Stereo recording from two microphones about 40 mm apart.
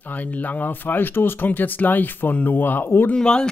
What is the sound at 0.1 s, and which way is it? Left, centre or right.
Speech, left.